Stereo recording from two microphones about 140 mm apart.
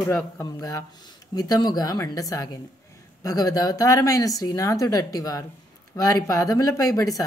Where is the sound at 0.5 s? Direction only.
25° left (ahead or behind).